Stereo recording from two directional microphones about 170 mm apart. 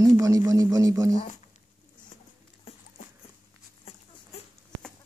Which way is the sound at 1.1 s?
35° left (ahead or behind).